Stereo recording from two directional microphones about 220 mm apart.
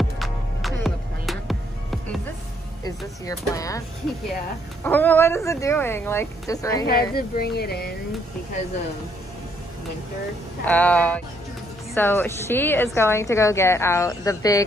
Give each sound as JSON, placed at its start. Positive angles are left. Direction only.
{"t": 0.2, "sound": "music", "side_deg": 0}
{"t": 3.3, "sound": "a woman's voice", "side_deg": 15}
{"t": 4.8, "sound": "a woman's voice", "side_deg": 10}
{"t": 6.9, "sound": "speech", "side_deg": 45}
{"t": 10.6, "sound": "a woman's voice", "side_deg": 5}